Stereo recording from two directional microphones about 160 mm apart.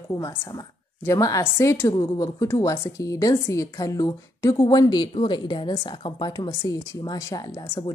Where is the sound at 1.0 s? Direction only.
20° left (ahead or behind).